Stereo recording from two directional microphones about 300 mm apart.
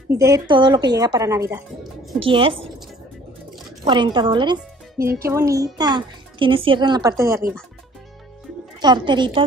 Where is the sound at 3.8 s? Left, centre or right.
Centre.